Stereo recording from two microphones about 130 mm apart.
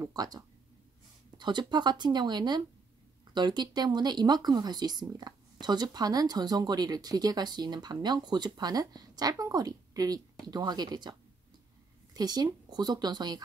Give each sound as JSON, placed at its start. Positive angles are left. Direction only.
{"t": 0.0, "sound": "speech", "side_deg": -30}
{"t": 1.4, "sound": "speech", "side_deg": -35}